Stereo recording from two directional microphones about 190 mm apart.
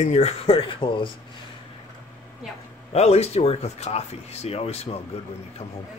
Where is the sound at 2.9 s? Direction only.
35° left (ahead or behind).